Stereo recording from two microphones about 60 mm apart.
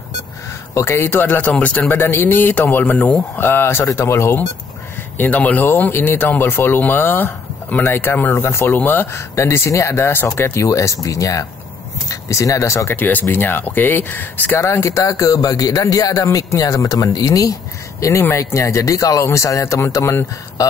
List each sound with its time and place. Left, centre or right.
0.7 s speech: left
1.5 s speech: left
2.0 s speech: left
3.3 s speech: left
3.8 s speech: left
5.1 s speech: left
5.7 s speech: left
9.3 s speech: left
12.9 s speech: left
14.6 s speech: left
18.3 s speech: left
19.2 s speech: left